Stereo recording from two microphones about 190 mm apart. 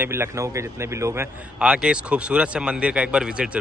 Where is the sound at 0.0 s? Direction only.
15° right (ahead or behind).